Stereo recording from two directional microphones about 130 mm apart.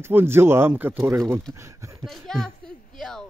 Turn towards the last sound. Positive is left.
turn(degrees=5)  # may be behind; listen again after turning